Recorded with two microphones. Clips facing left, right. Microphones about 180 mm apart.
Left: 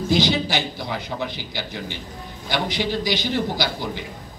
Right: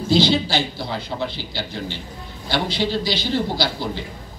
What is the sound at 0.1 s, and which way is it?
A man's voice, 15° left (ahead or behind).